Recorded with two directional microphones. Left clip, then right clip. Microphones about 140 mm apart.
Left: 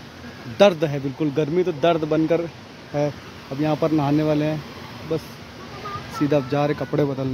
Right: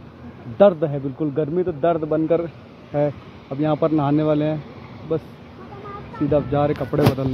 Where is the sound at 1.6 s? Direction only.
35° left (ahead or behind).